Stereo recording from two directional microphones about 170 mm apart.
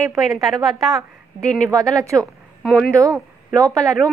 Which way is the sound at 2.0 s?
20° right (ahead or behind).